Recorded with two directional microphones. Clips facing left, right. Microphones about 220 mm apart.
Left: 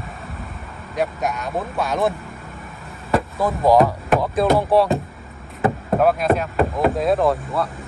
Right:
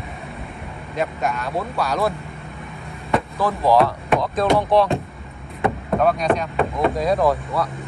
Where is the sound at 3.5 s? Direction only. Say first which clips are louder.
Left 2 dB; 15° left (ahead or behind).